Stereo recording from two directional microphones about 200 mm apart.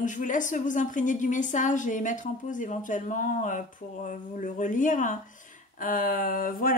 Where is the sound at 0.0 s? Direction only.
40° left (ahead or behind).